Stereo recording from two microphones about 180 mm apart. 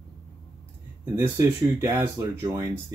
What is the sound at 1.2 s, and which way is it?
Speech, 15° right (ahead or behind).